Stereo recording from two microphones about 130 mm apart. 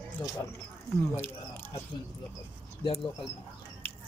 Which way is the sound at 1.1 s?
15° left (ahead or behind).